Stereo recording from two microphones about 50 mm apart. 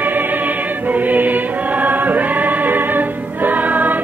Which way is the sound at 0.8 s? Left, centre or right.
Right.